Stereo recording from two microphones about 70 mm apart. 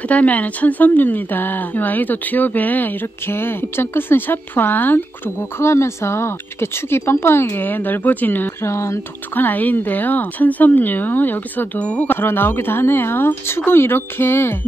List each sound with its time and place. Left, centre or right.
0.1 s a woman's voice: left
5.6 s speech: left
8.6 s speech: left
9.3 s a woman's voice: left